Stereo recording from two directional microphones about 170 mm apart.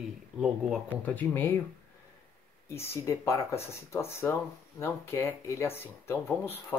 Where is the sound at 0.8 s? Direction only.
10° left (ahead or behind).